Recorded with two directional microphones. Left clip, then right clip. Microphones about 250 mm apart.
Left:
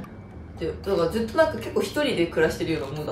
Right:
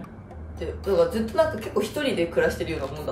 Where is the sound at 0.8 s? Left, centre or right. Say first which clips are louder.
Right 3 dB; centre.